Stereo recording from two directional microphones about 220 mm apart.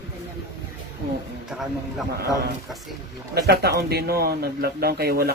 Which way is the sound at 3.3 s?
45° right (ahead or behind).